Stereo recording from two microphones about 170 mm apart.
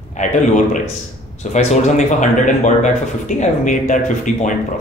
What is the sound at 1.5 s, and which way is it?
Speech, 45° left (ahead or behind).